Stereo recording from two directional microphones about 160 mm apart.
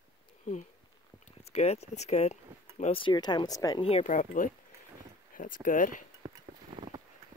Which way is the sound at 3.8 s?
45° left (ahead or behind).